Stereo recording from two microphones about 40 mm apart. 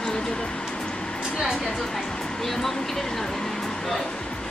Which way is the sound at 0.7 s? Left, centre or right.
Left.